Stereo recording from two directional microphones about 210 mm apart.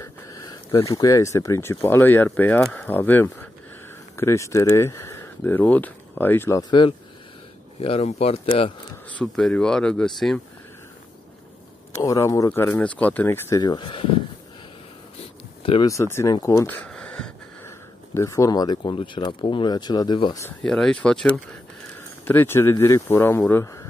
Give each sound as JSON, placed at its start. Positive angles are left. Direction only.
{"t": 0.0, "sound": "speech", "side_deg": 15}
{"t": 7.8, "sound": "speech", "side_deg": 30}
{"t": 9.2, "sound": "speech", "side_deg": 5}
{"t": 12.0, "sound": "speech", "side_deg": 15}
{"t": 15.6, "sound": "speech", "side_deg": 25}
{"t": 15.9, "sound": "speech", "side_deg": 15}
{"t": 20.4, "sound": "speech", "side_deg": 5}